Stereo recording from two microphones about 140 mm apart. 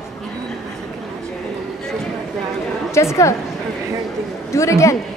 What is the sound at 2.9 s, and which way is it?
Speech, 20° left (ahead or behind).